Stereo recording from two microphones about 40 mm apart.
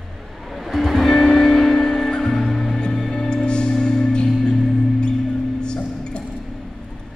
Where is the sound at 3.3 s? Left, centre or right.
Left; by 4.9 s centre.